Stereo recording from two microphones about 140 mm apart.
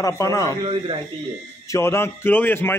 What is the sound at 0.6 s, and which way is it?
Speech, 40° right (ahead or behind).